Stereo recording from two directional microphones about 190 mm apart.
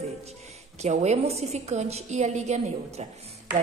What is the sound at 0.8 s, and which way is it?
A woman's voice, 35° right (ahead or behind).